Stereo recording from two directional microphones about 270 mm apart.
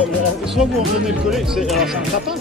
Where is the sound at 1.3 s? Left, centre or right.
Centre.